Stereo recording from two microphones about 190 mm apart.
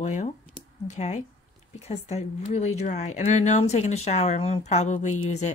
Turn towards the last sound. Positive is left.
turn(degrees=35)  # may be behind; listen again after turning